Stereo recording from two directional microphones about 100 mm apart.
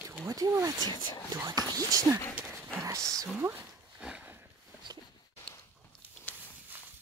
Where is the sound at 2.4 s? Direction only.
5° left (ahead or behind).